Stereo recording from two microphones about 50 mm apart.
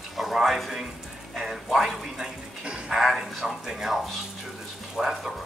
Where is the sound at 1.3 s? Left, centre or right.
Centre.